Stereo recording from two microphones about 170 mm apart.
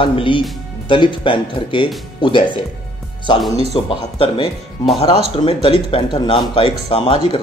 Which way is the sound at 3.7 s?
30° left (ahead or behind).